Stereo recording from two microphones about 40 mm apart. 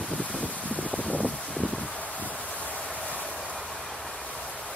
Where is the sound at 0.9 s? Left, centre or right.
Right.